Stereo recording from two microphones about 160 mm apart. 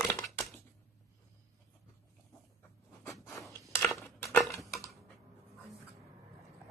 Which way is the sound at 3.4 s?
20° left (ahead or behind).